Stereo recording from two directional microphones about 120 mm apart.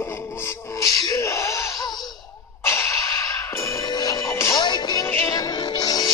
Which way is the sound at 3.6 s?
25° left (ahead or behind).